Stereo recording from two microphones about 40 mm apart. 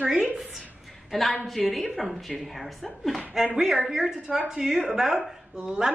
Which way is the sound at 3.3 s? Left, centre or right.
Centre.